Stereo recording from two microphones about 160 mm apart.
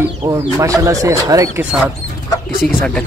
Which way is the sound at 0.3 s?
20° right (ahead or behind).